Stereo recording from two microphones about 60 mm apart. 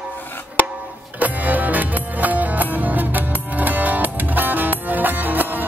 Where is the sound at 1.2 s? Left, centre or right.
Right.